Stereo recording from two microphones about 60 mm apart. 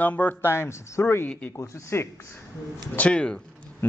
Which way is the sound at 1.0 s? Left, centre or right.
Left.